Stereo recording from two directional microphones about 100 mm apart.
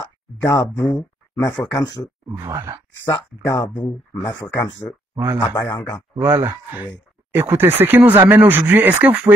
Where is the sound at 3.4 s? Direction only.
40° left (ahead or behind).